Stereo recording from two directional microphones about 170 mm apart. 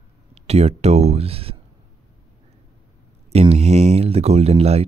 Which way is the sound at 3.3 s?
40° right (ahead or behind).